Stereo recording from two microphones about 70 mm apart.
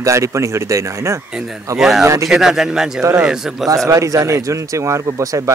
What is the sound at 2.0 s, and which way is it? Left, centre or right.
Speech, right.